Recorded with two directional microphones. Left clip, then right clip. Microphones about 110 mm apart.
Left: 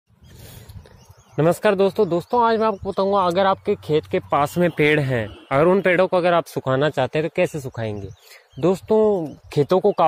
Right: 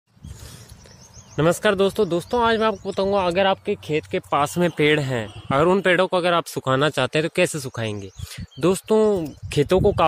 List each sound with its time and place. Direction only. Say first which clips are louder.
1.3 s speech: left 1 dB; 15° right (ahead or behind)
3.8 s speech: left 3 dB; centre (ahead or behind)
6.6 s speech: even; 25° right (ahead or behind)
7.2 s speech: even; 45° right (ahead or behind); by 10.0 s 25° right (ahead or behind)